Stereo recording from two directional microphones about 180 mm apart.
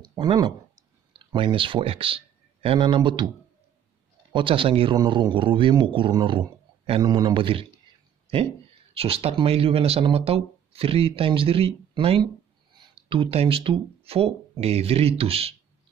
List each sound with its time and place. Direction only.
0.1 s speech: 25° right (ahead or behind)
4.3 s speech: 25° right (ahead or behind)
8.9 s speech: 35° right (ahead or behind)